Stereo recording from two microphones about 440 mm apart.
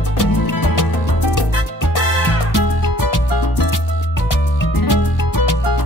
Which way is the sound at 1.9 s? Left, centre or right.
Left.